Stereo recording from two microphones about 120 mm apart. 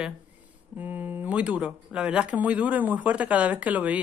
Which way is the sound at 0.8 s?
15° right (ahead or behind).